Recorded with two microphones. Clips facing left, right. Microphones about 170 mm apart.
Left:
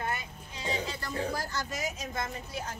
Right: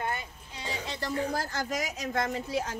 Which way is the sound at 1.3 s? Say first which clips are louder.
Right 3 dB; 50° right (ahead or behind).